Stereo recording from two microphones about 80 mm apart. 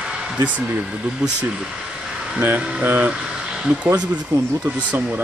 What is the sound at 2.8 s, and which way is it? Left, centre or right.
Speech, right.